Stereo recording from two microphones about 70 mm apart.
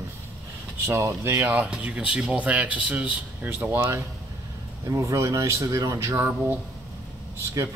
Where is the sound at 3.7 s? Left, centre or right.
Right.